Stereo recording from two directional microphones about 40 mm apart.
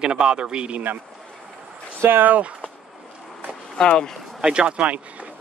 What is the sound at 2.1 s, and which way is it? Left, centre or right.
Speech, right.